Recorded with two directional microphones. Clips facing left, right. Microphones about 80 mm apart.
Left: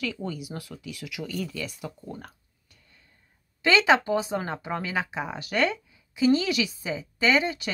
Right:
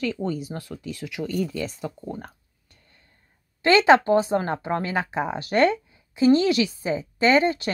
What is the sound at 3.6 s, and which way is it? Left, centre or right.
Speech, right.